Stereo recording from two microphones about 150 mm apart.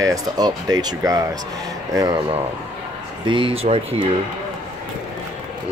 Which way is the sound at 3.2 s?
35° right (ahead or behind).